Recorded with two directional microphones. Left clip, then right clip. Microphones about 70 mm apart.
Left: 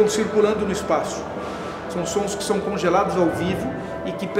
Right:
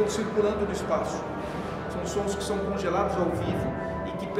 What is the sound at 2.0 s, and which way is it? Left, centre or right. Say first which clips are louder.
A man's voice: left 6 dB; left.